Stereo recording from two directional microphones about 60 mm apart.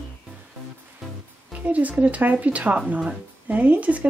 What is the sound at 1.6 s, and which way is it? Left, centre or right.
Speech, right.